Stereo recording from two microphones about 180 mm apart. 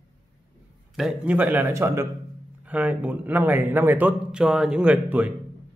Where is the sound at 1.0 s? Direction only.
5° right (ahead or behind).